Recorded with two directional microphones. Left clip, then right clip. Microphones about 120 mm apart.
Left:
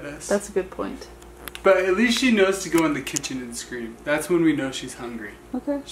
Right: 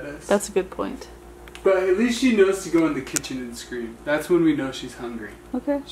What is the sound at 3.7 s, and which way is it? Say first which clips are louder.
Speech: even; centre (ahead or behind).